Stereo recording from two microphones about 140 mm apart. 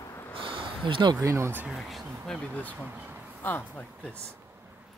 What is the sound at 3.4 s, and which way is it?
Speech, 15° left (ahead or behind).